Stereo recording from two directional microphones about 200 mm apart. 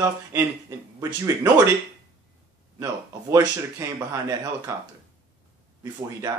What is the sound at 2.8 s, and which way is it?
Speech, 15° right (ahead or behind).